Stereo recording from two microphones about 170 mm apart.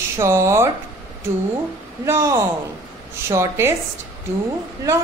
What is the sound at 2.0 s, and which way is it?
A woman's voice, 15° right (ahead or behind).